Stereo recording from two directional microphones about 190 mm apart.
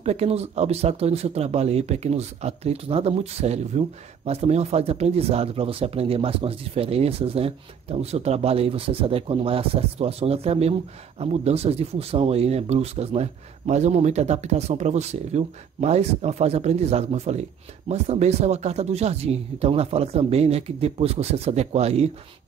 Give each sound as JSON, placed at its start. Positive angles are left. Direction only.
{"t": 0.0, "sound": "speech", "side_deg": -35}